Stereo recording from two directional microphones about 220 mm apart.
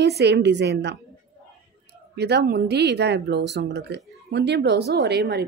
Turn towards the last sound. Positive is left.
turn(degrees=-50)  # may be behind; listen again after turning